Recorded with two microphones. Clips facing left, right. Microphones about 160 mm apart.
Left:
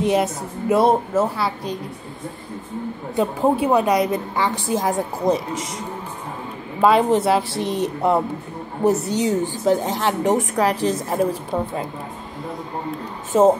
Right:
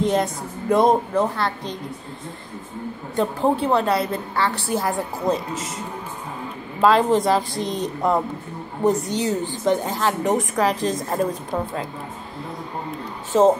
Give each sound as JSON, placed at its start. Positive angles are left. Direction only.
{"t": 0.0, "sound": "a woman's voice", "side_deg": 10}
{"t": 3.2, "sound": "a woman's voice", "side_deg": 10}
{"t": 6.8, "sound": "a woman's voice", "side_deg": 10}
{"t": 13.3, "sound": "a woman's voice", "side_deg": 10}